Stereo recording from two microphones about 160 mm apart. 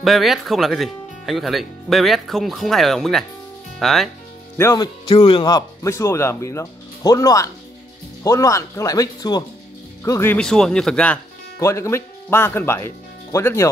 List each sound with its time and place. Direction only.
0.0 s speech: centre (ahead or behind)
4.6 s speech: 15° left (ahead or behind)
5.0 s speech: 35° left (ahead or behind)
5.9 s speech: 15° left (ahead or behind)
10.3 s speech: 5° left (ahead or behind)
11.6 s speech: 20° left (ahead or behind)